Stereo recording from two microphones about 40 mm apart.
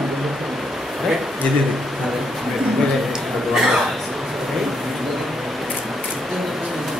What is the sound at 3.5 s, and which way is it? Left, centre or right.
Speech, centre.